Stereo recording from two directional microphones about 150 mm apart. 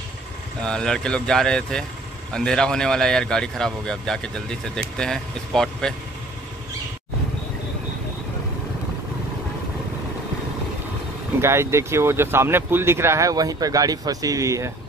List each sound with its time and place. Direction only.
0.6 s speech: 5° left (ahead or behind)
11.4 s speech: 15° right (ahead or behind)